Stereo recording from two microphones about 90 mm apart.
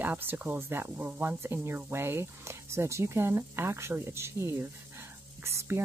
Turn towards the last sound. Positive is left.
turn(degrees=-30)  # may be behind; listen again after turning